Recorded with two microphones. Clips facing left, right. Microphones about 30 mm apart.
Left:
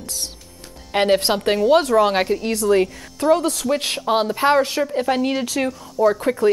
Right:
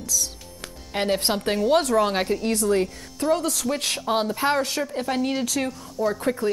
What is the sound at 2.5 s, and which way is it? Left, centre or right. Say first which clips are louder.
Speech: left 6 dB; left.